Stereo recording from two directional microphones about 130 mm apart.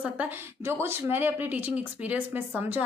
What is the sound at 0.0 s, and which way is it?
A woman's voice, 15° right (ahead or behind).